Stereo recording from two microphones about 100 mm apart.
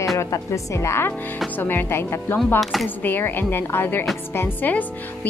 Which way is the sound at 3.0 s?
20° left (ahead or behind).